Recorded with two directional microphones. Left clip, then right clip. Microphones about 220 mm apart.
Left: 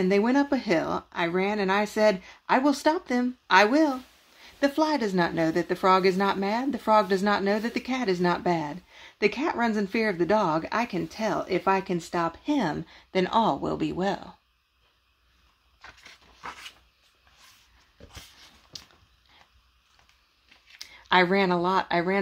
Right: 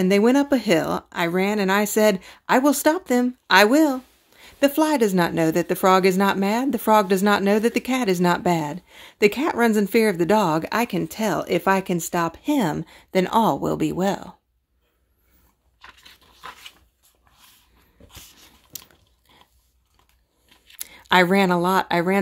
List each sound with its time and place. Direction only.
0.0 s speech: 45° right (ahead or behind)
15.8 s a sound: centre (ahead or behind)
20.8 s speech: 45° right (ahead or behind)